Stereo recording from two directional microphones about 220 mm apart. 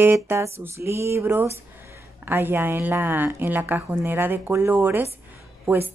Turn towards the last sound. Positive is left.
turn(degrees=-10)  # may be behind; listen again after turning